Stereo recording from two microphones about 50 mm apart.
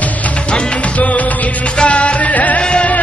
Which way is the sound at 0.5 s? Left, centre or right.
Left.